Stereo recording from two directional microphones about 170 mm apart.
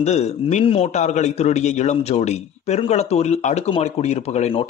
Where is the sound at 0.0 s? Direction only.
40° left (ahead or behind).